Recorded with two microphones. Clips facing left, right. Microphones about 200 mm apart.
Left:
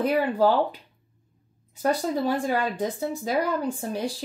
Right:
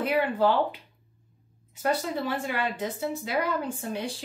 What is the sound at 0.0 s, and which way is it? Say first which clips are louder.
Speech: left 3 dB; 40° left (ahead or behind).